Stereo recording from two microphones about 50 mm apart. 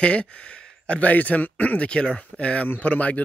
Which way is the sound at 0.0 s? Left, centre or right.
Left.